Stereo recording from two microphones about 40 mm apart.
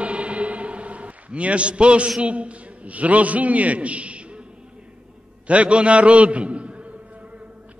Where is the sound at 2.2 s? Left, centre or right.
Right.